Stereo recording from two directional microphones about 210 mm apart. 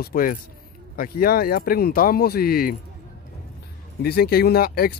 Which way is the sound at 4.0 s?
45° left (ahead or behind).